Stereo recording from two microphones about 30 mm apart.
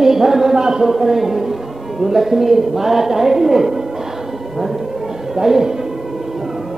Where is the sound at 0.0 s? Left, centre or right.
Centre.